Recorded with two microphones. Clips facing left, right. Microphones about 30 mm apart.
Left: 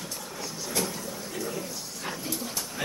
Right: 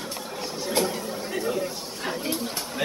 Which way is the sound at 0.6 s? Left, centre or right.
Right.